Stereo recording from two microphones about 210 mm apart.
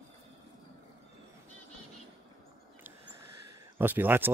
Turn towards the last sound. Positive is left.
turn(degrees=-10)  # may be behind; listen again after turning